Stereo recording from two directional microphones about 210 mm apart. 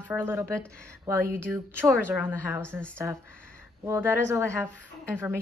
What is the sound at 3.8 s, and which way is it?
A woman's voice, 10° right (ahead or behind).